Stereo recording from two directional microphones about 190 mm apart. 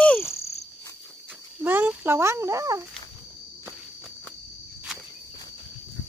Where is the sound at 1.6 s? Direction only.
10° right (ahead or behind).